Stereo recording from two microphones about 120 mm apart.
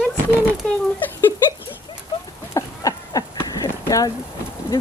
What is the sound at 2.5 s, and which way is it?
Horse, 30° left (ahead or behind).